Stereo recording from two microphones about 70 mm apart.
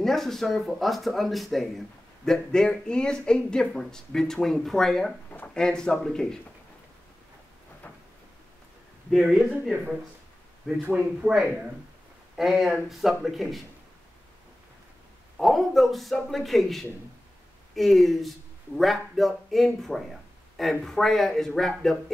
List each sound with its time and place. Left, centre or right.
0.0 s speech: centre
7.8 s a sound: left
9.1 s speech: centre
9.5 s speech: centre
11.1 s speech: centre
15.3 s speech: centre